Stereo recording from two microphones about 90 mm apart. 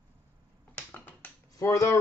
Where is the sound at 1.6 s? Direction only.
40° left (ahead or behind).